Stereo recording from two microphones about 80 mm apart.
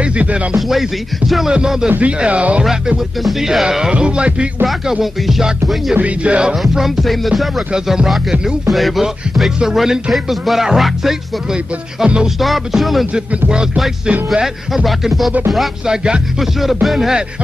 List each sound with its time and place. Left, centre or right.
0.0 s music: centre
0.6 s music: centre
2.6 s music: centre
5.9 s music: centre
6.6 s music: centre